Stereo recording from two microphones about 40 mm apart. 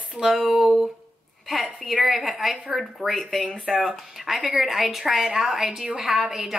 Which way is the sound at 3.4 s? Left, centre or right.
Right.